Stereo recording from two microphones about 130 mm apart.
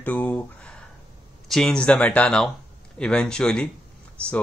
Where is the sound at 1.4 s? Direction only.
5° left (ahead or behind).